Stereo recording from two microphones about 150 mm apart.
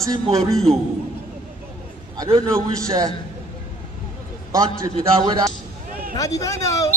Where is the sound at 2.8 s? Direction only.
20° right (ahead or behind).